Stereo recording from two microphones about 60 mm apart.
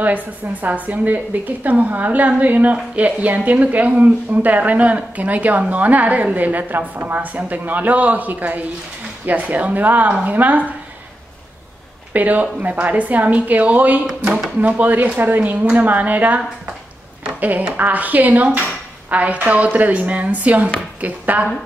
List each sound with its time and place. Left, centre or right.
0.0 s a woman's voice: right
12.1 s a woman's voice: right
14.0 s speech: centre
14.6 s a woman's voice: right